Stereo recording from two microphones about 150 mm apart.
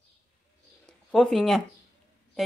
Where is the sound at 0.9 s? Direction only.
5° left (ahead or behind).